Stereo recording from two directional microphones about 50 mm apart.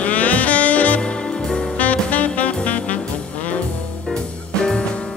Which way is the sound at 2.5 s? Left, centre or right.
Left.